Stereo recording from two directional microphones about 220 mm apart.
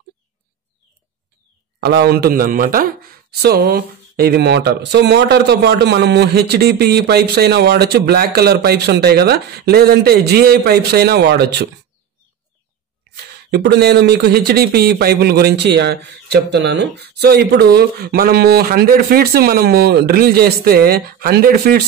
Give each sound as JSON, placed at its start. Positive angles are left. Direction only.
{"t": 1.8, "sound": "speech", "side_deg": -45}
{"t": 13.1, "sound": "speech", "side_deg": -50}